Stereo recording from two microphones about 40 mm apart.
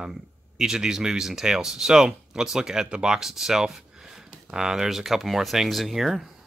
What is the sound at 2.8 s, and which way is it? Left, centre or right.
Speech, right.